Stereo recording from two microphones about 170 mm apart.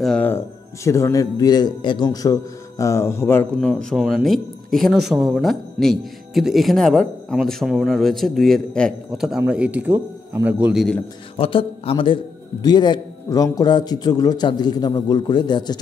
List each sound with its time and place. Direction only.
0.0 s speech: 5° left (ahead or behind)
0.8 s a man's voice: 15° left (ahead or behind); by 11.0 s centre (ahead or behind)
11.3 s a man's voice: 35° left (ahead or behind)